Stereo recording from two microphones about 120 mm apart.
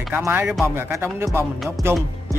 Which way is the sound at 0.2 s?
15° right (ahead or behind).